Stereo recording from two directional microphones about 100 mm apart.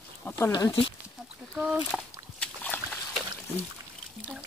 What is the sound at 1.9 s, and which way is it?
Speech, centre (ahead or behind).